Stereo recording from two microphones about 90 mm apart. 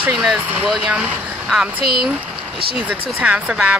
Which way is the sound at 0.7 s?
5° right (ahead or behind).